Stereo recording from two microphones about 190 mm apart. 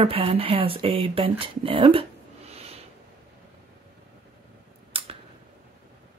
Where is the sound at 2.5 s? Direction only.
35° right (ahead or behind).